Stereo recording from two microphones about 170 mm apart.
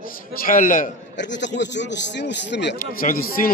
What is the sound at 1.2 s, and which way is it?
Speech, 90° left.